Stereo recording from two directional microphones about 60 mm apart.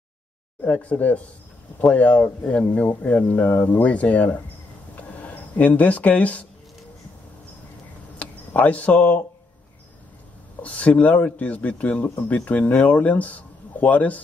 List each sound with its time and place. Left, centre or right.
0.6 s speech: left
4.9 s a sound: left
8.2 s speech: left
10.6 s speech: left